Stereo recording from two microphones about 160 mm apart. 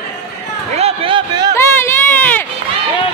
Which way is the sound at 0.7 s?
35° right (ahead or behind).